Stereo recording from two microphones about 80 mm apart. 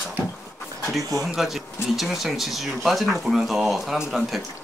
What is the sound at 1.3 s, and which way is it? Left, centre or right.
Speech, centre.